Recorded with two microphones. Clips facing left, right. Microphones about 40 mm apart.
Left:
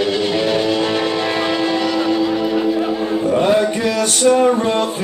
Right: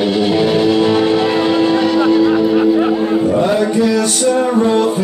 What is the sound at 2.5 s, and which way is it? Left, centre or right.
Music, right.